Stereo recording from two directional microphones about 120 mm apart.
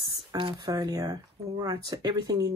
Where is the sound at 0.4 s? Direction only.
45° right (ahead or behind).